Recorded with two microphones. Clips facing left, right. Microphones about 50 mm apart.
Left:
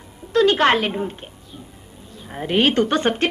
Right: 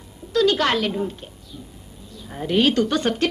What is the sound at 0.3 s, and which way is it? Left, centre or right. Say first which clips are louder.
A woman's voice: left 3 dB; left.